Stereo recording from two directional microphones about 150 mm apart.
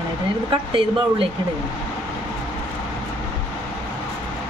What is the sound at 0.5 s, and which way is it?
Speech, 35° right (ahead or behind).